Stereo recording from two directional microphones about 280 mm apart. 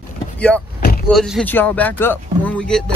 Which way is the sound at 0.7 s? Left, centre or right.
Left.